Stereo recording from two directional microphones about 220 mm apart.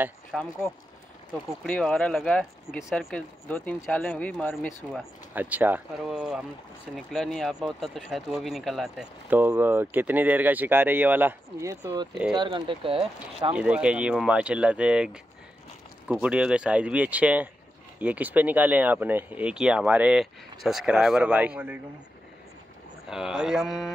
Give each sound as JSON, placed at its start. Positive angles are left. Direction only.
{"t": 0.0, "sound": "speech", "side_deg": 0}
{"t": 5.3, "sound": "speech", "side_deg": -10}
{"t": 13.5, "sound": "speech", "side_deg": -5}
{"t": 16.1, "sound": "speech", "side_deg": -5}
{"t": 23.0, "sound": "speech", "side_deg": -5}